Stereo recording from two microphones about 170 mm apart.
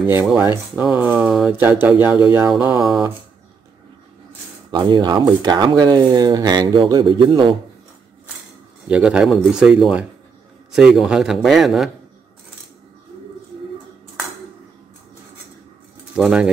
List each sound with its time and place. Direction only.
0.0 s speech: 10° right (ahead or behind)
4.6 s speech: 30° right (ahead or behind)
8.8 s speech: 5° right (ahead or behind)
16.2 s speech: 5° right (ahead or behind)